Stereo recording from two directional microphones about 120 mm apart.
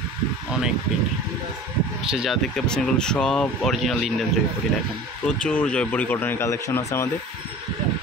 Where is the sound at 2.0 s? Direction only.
5° right (ahead or behind).